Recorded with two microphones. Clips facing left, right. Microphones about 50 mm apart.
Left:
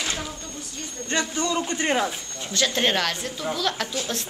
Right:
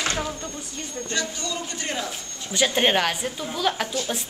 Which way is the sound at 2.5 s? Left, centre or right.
Centre.